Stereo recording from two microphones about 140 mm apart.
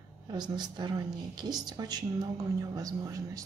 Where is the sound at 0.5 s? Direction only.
30° right (ahead or behind).